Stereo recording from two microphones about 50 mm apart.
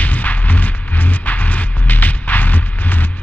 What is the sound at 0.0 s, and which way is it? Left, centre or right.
Music, left.